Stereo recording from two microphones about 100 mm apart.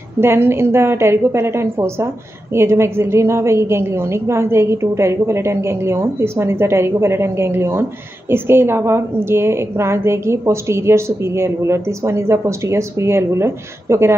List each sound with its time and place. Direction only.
0.2 s a woman's voice: 25° right (ahead or behind)